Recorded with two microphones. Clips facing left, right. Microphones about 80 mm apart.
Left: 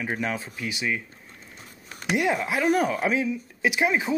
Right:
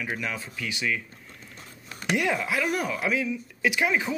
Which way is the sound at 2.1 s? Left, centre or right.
Left.